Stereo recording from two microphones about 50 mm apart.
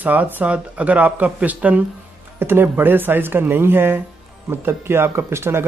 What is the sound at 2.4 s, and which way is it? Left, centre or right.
Speech, right.